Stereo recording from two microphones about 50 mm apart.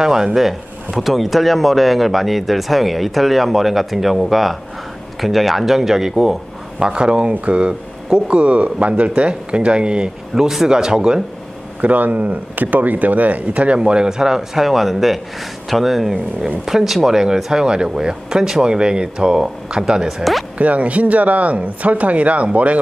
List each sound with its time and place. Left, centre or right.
0.0 s speech: centre
11.8 s speech: right
13.7 s speech: centre
20.5 s speech: right